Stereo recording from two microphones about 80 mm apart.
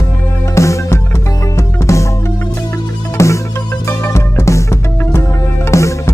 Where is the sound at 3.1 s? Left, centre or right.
Left.